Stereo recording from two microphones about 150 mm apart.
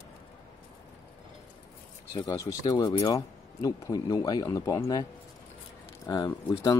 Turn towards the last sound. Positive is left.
turn(degrees=25)  # may be behind; listen again after turning